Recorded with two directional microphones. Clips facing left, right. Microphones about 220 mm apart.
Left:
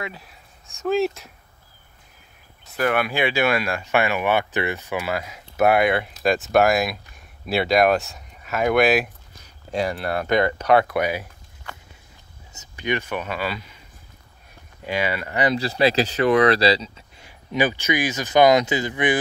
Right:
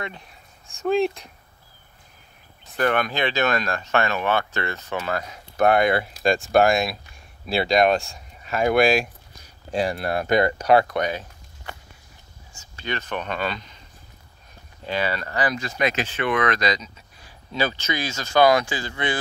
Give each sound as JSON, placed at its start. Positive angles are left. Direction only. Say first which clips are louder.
{"t": 0.0, "sound": "speech", "louder": "left 1 dB", "side_deg": 5}
{"t": 2.7, "sound": "speech", "louder": "even", "side_deg": 5}
{"t": 9.8, "sound": "speech", "louder": "even", "side_deg": -35}
{"t": 10.8, "sound": "speech", "louder": "left 1 dB", "side_deg": 5}
{"t": 12.5, "sound": "speech", "louder": "left 5 dB", "side_deg": 15}
{"t": 14.9, "sound": "speech", "louder": "left 1 dB", "side_deg": 15}
{"t": 15.5, "sound": "speech", "louder": "left 5 dB", "side_deg": 35}
{"t": 17.5, "sound": "speech", "louder": "left 4 dB", "side_deg": 15}